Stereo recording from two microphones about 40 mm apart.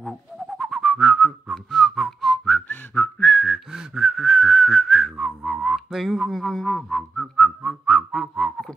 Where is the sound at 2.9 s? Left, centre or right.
Left.